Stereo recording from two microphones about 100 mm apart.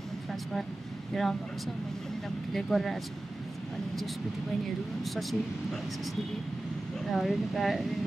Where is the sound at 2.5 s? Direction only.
Centre (ahead or behind).